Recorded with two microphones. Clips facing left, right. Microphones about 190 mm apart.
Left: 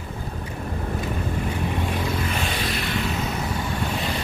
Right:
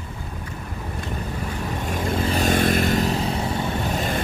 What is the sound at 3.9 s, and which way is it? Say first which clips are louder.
Boat: right 3 dB; 45° right (ahead or behind).